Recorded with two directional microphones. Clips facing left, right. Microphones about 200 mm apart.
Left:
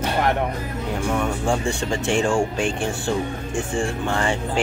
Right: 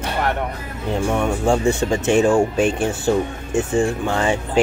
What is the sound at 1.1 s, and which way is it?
Speech, 20° right (ahead or behind).